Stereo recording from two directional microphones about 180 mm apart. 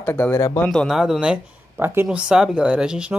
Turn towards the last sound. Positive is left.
turn(degrees=-5)  # may be behind; listen again after turning